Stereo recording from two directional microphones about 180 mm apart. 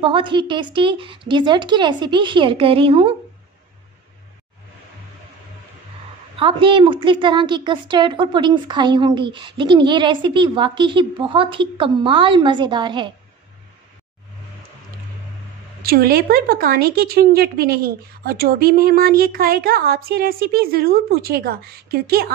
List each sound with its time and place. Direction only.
0.0 s a woman's voice: 25° right (ahead or behind)
6.3 s a woman's voice: 30° right (ahead or behind)
15.8 s speech: 55° right (ahead or behind)